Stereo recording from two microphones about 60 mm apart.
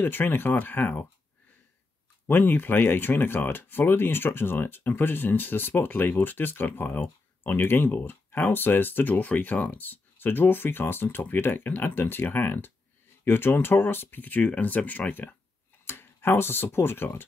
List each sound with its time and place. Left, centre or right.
0.0 s speech: left
2.2 s speech: left